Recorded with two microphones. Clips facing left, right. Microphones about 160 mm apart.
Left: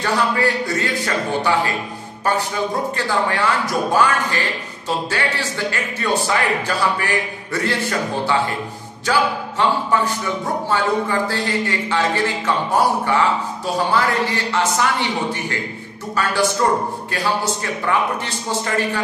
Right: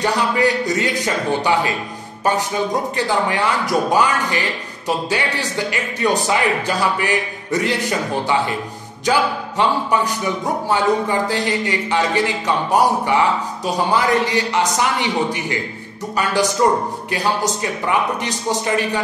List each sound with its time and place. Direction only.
0.0 s a man's voice: 15° right (ahead or behind)
16.2 s a man's voice: 15° right (ahead or behind)